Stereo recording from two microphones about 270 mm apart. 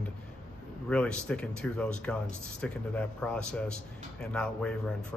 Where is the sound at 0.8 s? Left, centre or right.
Centre.